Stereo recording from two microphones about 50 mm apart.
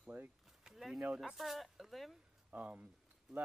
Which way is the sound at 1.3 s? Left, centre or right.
Centre.